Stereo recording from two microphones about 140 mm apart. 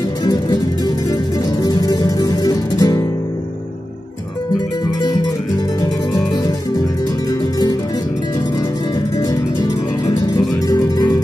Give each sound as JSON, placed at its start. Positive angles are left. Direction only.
{"t": 0.2, "sound": "music", "side_deg": 25}
{"t": 1.6, "sound": "music", "side_deg": 25}
{"t": 5.8, "sound": "music", "side_deg": 25}
{"t": 9.6, "sound": "music", "side_deg": 25}